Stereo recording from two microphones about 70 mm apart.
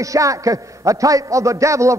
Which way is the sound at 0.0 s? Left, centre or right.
Right.